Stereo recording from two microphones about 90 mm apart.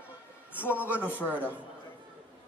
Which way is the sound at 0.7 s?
15° right (ahead or behind).